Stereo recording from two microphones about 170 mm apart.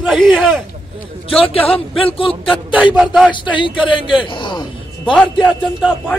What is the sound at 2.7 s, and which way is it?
Speech, 5° right (ahead or behind).